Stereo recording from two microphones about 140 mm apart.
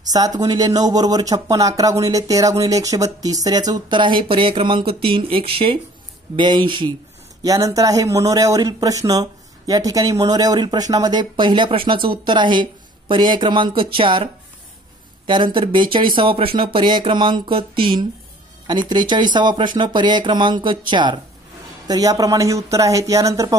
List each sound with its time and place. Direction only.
0.4 s speech: 30° right (ahead or behind)
7.4 s speech: 25° right (ahead or behind)